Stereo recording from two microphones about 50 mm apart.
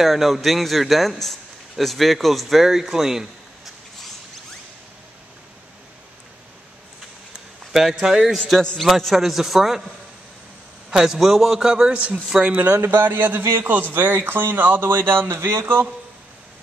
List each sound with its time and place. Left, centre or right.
0.0 s a man's voice: centre
7.7 s a man's voice: centre
8.4 s a man's voice: centre
11.1 s a man's voice: centre
11.9 s a man's voice: right
12.8 s speech: right